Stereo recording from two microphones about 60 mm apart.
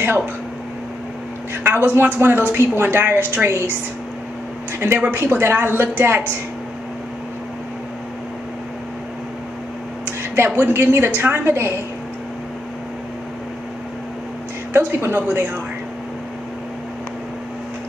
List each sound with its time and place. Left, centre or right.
1.5 s a woman's voice: right
4.7 s a woman's voice: right
10.0 s a sound: right
10.6 s a woman's voice: right
14.7 s a woman's voice: right